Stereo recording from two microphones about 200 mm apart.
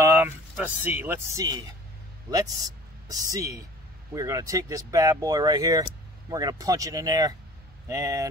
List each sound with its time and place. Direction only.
0.0 s speech: 10° right (ahead or behind)
3.1 s speech: 20° right (ahead or behind)